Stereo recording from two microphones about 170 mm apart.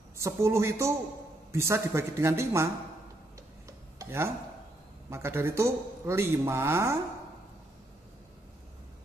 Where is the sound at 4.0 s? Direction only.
15° right (ahead or behind).